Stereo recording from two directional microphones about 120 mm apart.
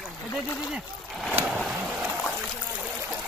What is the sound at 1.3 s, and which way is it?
Vehicle, 10° right (ahead or behind).